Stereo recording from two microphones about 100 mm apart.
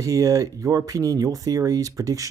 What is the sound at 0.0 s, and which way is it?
Speech, 35° right (ahead or behind).